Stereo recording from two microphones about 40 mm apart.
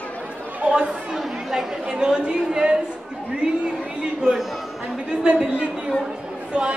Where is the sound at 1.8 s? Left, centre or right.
Centre.